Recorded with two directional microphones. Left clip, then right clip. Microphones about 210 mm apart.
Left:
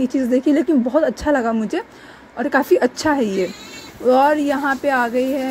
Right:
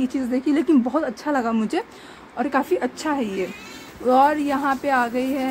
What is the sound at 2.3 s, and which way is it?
A woman's voice, 15° left (ahead or behind).